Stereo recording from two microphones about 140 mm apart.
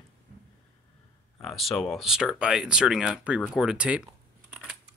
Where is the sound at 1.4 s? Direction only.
Centre (ahead or behind).